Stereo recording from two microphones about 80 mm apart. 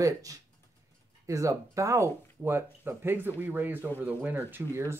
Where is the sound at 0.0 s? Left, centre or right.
Right.